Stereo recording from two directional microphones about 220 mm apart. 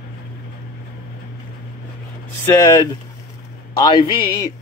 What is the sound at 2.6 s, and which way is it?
A man's voice, 15° left (ahead or behind).